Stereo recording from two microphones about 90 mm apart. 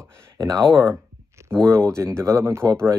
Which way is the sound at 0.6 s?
5° left (ahead or behind).